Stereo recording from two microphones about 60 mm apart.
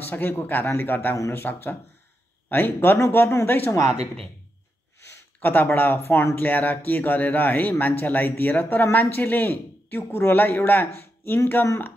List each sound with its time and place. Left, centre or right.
0.0 s speech: left
5.4 s speech: left
5.9 s speech: left